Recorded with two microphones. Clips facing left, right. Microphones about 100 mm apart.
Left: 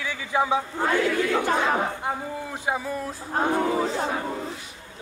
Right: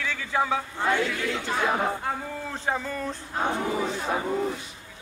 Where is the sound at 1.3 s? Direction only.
55° left (ahead or behind).